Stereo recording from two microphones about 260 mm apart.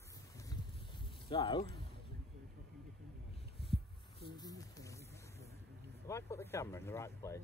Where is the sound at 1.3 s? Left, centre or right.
Centre.